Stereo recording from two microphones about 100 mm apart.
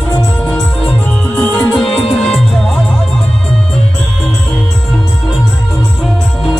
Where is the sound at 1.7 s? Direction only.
5° left (ahead or behind).